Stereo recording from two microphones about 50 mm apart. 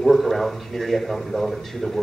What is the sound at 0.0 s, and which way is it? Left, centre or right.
A man's voice, centre.